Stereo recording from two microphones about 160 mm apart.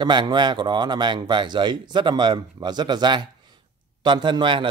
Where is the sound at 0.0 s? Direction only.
30° right (ahead or behind).